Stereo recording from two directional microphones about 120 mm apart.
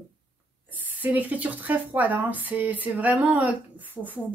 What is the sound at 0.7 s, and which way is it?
Speech, 15° right (ahead or behind).